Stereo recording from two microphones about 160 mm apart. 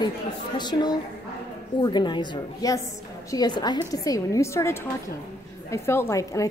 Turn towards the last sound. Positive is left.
turn(degrees=20)  # may be behind; listen again after turning